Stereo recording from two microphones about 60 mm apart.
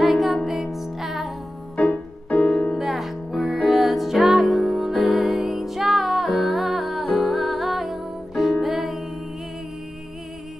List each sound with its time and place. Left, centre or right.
0.0 s music: centre
1.8 s music: left
2.8 s music: centre